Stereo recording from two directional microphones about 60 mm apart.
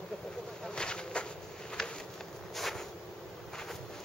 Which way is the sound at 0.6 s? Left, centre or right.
Centre.